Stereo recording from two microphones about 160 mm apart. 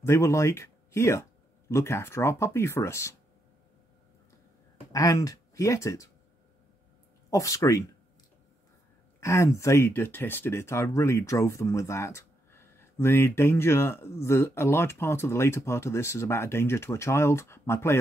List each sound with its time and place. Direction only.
0.0 s speech: 15° left (ahead or behind)
4.9 s speech: 20° left (ahead or behind)
7.2 s speech: 20° left (ahead or behind)
9.2 s speech: 20° left (ahead or behind)